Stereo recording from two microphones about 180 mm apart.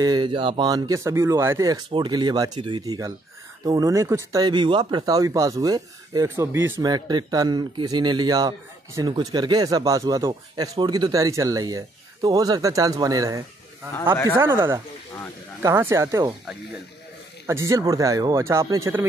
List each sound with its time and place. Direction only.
0.0 s speech: 25° right (ahead or behind)
17.5 s speech: 15° right (ahead or behind)